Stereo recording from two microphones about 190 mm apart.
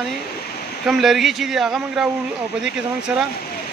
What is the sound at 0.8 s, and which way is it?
Speech, centre (ahead or behind).